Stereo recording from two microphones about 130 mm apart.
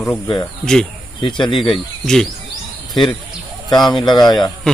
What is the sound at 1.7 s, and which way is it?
Speech, 5° left (ahead or behind).